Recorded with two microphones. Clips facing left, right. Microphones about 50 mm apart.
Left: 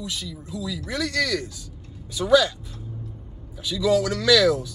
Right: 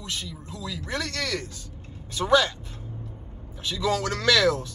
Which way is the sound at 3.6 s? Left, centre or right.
Right.